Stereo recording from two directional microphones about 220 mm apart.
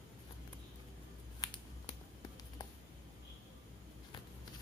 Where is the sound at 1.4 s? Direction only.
15° left (ahead or behind).